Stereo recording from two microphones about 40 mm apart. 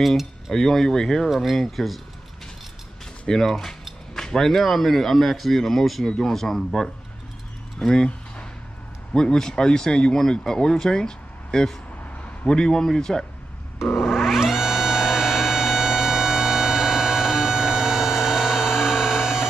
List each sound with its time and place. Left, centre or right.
0.5 s speech: centre
1.3 s speech: centre
3.3 s speech: centre
9.1 s speech: centre
13.9 s a sound: centre